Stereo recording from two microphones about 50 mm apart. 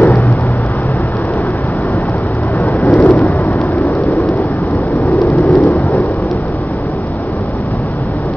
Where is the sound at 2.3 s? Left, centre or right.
Left.